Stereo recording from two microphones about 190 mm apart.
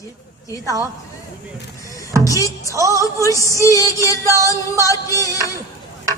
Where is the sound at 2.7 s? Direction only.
15° right (ahead or behind).